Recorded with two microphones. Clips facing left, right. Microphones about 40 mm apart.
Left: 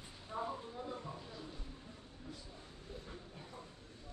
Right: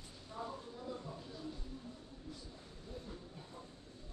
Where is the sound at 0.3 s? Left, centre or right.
Left.